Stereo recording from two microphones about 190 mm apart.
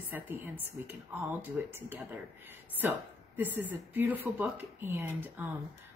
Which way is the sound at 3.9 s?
10° right (ahead or behind).